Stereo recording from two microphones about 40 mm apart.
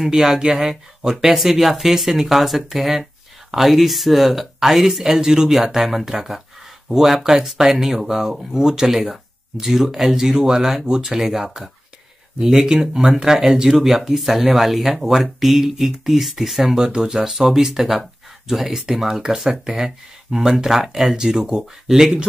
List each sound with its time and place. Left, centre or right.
0.0 s speech: centre
7.4 s speech: centre